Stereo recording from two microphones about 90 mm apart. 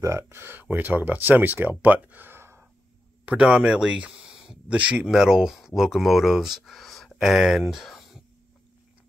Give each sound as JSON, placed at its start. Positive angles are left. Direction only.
{"t": 0.0, "sound": "speech", "side_deg": -30}
{"t": 3.3, "sound": "speech", "side_deg": -10}